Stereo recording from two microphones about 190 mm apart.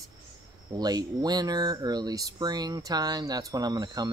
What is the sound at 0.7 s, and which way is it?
Speech, 20° right (ahead or behind).